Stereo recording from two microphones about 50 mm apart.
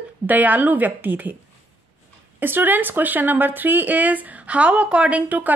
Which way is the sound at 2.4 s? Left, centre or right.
Right.